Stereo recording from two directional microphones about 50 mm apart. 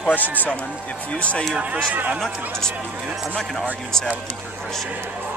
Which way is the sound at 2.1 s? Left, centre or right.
Centre.